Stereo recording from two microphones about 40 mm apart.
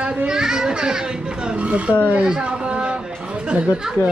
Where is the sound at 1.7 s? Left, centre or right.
Right.